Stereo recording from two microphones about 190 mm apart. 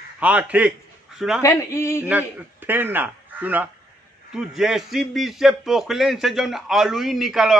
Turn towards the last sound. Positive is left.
turn(degrees=0)  # may be behind; listen again after turning